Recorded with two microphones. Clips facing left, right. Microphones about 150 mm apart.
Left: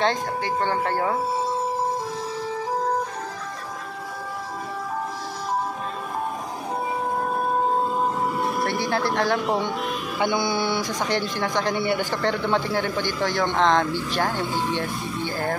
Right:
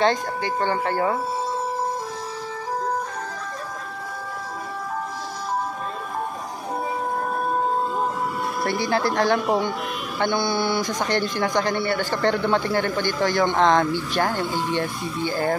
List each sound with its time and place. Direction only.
0.0 s a man's voice: centre (ahead or behind)
8.4 s speech: centre (ahead or behind)
10.1 s speech: 10° left (ahead or behind)
11.8 s speech: 15° left (ahead or behind)
12.2 s a man's voice: centre (ahead or behind)